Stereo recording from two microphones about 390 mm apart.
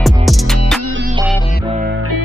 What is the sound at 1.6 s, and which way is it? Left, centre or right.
Music, centre.